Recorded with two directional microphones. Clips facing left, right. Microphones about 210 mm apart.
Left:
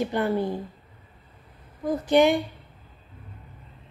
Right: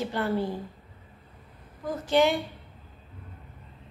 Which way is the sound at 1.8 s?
15° left (ahead or behind).